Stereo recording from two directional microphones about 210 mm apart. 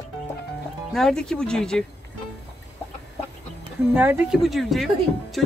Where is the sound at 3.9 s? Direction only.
10° right (ahead or behind).